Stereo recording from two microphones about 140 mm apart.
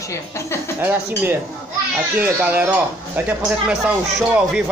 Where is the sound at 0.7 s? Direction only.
15° right (ahead or behind).